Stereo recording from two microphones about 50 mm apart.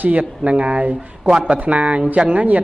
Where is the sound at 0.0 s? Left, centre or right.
Right.